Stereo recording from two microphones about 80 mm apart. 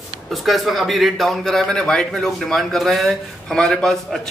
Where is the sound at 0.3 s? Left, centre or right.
Centre.